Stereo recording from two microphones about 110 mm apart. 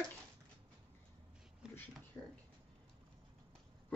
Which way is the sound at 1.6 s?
5° right (ahead or behind).